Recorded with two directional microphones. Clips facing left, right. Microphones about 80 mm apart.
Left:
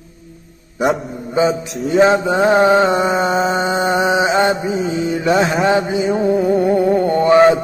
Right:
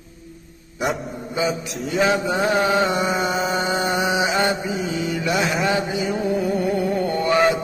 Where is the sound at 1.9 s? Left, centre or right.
Left.